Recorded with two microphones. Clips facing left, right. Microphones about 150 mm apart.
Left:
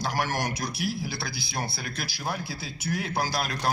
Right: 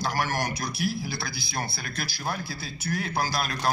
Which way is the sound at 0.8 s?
25° left (ahead or behind).